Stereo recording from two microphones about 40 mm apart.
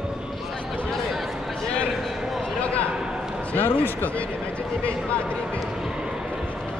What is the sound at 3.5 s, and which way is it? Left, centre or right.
Speech, left.